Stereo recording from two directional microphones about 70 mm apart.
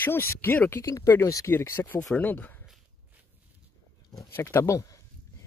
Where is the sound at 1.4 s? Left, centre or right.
Left.